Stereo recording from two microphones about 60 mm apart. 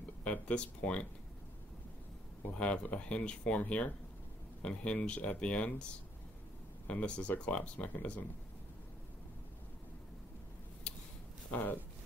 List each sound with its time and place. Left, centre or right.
0.2 s speech: left
2.5 s speech: centre
10.9 s a sound: centre
11.5 s speech: left